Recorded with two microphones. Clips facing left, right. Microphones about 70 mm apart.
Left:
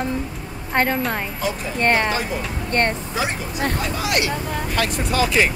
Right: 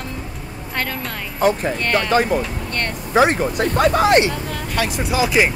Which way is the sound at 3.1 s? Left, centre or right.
Right.